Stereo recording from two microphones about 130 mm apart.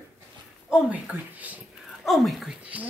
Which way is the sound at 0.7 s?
10° right (ahead or behind).